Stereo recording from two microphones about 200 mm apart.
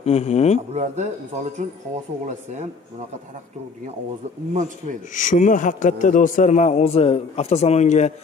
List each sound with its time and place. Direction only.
0.0 s a man's voice: 30° left (ahead or behind)
0.7 s speech: 35° right (ahead or behind)
5.1 s a man's voice: 40° left (ahead or behind)